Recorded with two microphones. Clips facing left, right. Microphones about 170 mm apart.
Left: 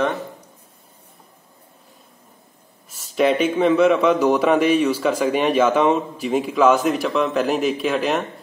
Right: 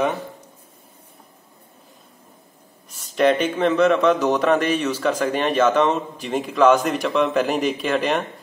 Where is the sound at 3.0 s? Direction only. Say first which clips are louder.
Even; 5° left (ahead or behind).